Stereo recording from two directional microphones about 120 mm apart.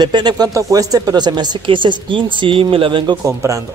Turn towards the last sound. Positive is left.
turn(degrees=-25)  # may be behind; listen again after turning